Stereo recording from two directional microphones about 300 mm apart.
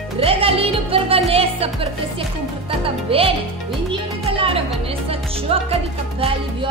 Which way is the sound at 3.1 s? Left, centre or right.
Centre.